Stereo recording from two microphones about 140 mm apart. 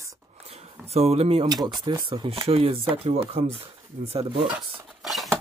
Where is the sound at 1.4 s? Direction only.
30° right (ahead or behind); by 4.5 s 45° right (ahead or behind).